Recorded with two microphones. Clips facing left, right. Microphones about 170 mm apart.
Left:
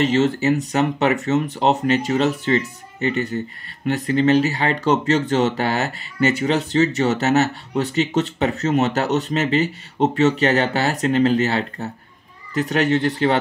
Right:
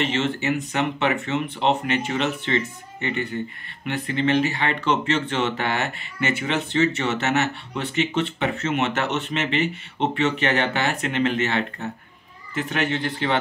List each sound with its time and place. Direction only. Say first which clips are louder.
0.0 s speech: left 6 dB; 40° left (ahead or behind)